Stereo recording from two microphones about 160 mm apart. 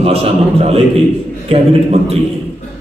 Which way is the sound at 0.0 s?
40° right (ahead or behind).